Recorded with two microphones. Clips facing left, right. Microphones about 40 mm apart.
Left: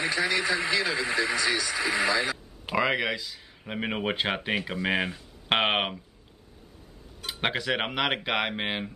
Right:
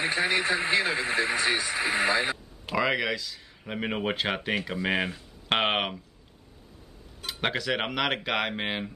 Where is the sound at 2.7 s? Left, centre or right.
Centre.